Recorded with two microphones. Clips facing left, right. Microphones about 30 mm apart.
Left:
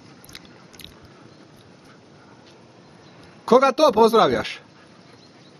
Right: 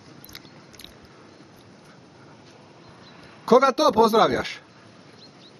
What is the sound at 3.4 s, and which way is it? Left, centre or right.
A man's voice, centre.